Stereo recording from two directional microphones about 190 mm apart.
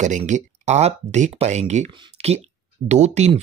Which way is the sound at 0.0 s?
40° right (ahead or behind).